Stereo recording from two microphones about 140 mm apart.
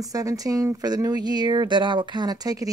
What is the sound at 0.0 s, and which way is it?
Speech, 25° right (ahead or behind).